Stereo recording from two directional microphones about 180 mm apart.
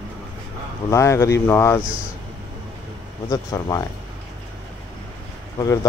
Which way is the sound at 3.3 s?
20° left (ahead or behind).